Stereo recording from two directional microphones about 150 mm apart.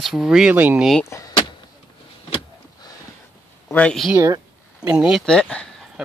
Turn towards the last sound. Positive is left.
turn(degrees=5)  # may be behind; listen again after turning